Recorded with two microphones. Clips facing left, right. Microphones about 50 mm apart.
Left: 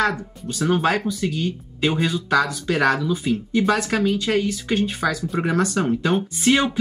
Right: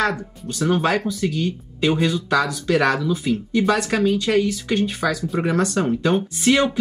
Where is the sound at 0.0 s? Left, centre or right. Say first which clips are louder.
Even; centre.